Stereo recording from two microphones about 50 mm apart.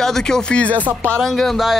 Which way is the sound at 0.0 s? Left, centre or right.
Centre.